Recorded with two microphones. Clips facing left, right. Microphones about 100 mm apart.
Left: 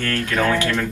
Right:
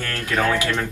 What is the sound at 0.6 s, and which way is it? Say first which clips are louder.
Speech: left 2 dB; 20° right (ahead or behind).